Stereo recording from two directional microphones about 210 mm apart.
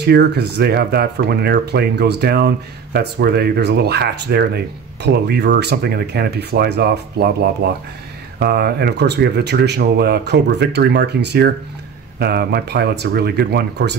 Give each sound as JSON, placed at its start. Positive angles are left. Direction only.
{"t": 0.0, "sound": "speech", "side_deg": -55}